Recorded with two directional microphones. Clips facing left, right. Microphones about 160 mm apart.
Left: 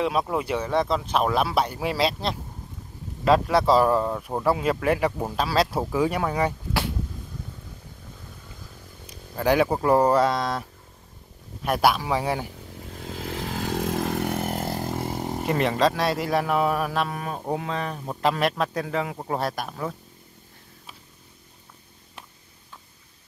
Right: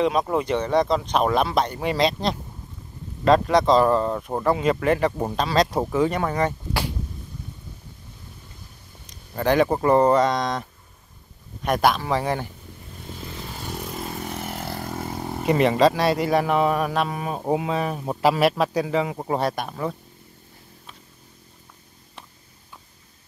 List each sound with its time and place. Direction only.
0.0 s speech: 5° left (ahead or behind)
9.0 s speech: 5° left (ahead or behind)
11.6 s speech: 5° left (ahead or behind)
12.9 s vehicle: 90° left; by 14.8 s 45° left (ahead or behind)
14.8 s vehicle: 15° left (ahead or behind)
15.4 s speech: 5° right (ahead or behind)